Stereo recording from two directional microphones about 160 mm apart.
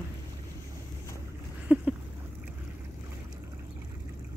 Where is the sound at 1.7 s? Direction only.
10° right (ahead or behind).